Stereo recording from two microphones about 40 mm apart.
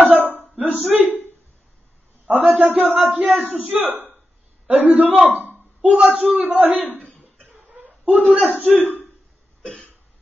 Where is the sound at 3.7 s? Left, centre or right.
Right.